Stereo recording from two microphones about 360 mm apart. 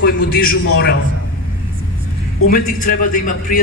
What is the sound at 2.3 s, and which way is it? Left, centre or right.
Speech, left.